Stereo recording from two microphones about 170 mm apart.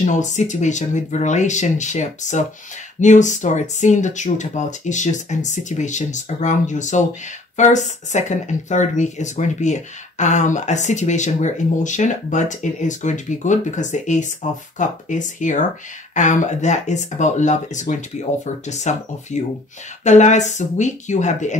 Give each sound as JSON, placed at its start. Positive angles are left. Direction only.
{"t": 0.0, "sound": "speech", "side_deg": 45}